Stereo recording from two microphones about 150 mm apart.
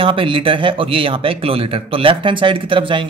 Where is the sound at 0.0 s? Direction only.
35° right (ahead or behind).